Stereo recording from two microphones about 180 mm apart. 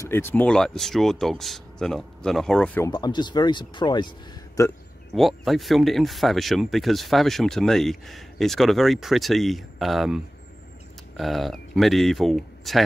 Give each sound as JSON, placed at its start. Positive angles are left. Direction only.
{"t": 0.0, "sound": "speech", "side_deg": 15}
{"t": 2.9, "sound": "speech", "side_deg": 25}
{"t": 5.1, "sound": "speech", "side_deg": 0}